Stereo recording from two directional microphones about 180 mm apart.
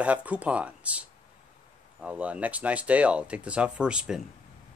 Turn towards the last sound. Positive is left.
turn(degrees=-5)  # may be behind; listen again after turning